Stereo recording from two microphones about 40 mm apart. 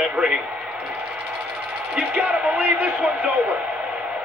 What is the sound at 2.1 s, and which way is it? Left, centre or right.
Speech, right.